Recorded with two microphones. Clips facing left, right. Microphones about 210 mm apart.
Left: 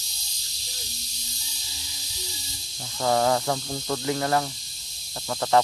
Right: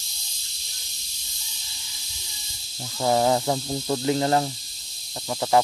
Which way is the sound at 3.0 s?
20° right (ahead or behind).